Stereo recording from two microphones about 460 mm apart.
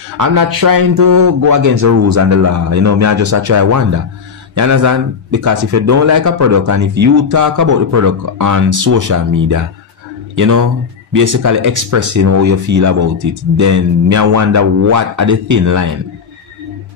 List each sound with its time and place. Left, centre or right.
0.2 s speech: right